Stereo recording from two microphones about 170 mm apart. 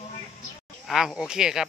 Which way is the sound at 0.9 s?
5° right (ahead or behind).